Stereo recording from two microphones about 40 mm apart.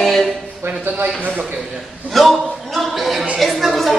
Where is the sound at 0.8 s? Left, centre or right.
Right.